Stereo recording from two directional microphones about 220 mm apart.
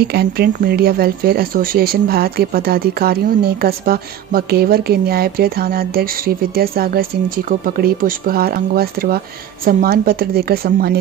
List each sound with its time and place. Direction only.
0.0 s speech: 45° right (ahead or behind)